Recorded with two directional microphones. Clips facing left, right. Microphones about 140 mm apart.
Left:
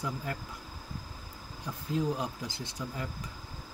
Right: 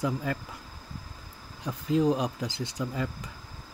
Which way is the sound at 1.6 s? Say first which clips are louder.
Right 7 dB; 90° right.